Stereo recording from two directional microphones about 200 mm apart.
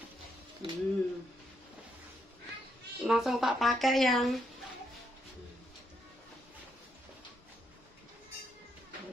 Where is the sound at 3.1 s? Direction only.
Centre (ahead or behind).